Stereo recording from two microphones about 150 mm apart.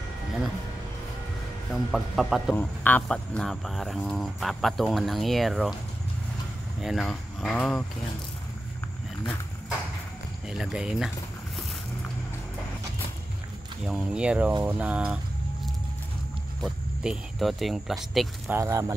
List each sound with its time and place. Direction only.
1.9 s speech: 5° right (ahead or behind)
2.5 s speech: 10° left (ahead or behind)
6.8 s speech: centre (ahead or behind)
10.5 s speech: 5° right (ahead or behind)
13.8 s speech: 5° right (ahead or behind)
16.6 s speech: centre (ahead or behind)
18.5 s speech: 20° right (ahead or behind)